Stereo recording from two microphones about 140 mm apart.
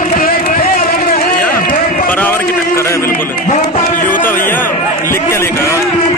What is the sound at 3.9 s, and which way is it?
Music, 75° left (ahead or behind).